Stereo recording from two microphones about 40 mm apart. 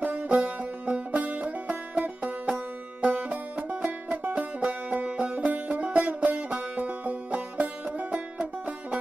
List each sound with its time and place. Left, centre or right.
0.0 s music: right
3.0 s music: right
4.4 s music: centre
4.8 s music: right